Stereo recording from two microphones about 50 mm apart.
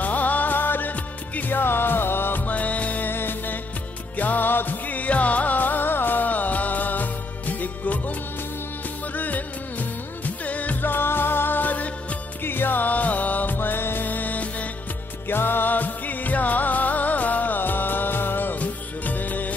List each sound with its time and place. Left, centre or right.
0.0 s music: left
9.1 s music of bollywood: left
12.4 s music: left
15.2 s music: left